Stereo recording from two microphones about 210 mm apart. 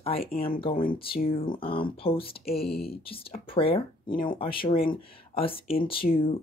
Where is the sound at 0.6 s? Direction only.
25° left (ahead or behind).